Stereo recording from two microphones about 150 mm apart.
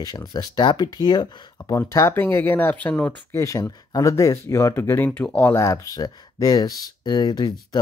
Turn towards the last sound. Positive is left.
turn(degrees=25)  # may be behind; listen again after turning